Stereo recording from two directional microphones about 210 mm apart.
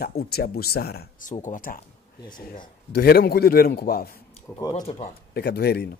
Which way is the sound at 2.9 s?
45° left (ahead or behind).